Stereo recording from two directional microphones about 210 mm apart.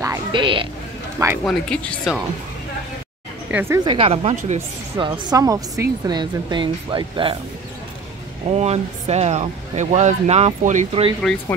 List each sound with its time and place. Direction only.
0.0 s music: 20° right (ahead or behind)
1.4 s speech: 5° left (ahead or behind)
3.5 s speech: 10° right (ahead or behind); by 4.6 s 30° right (ahead or behind)
4.9 s speech: 20° right (ahead or behind)
8.5 s speech: 30° right (ahead or behind)